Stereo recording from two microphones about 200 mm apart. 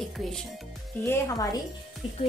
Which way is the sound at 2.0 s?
25° left (ahead or behind).